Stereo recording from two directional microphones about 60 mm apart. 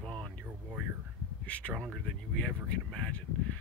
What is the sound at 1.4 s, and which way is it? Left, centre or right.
Speech, left.